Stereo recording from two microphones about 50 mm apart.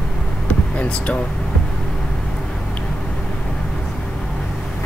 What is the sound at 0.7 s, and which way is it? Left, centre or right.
Speech, left.